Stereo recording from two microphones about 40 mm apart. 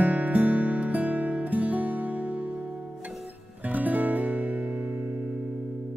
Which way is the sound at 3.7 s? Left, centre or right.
Right.